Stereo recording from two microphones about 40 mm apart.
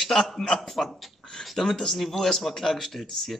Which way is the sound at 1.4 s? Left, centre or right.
Centre.